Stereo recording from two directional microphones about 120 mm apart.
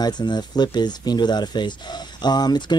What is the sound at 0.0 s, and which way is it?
Speech, 35° left (ahead or behind).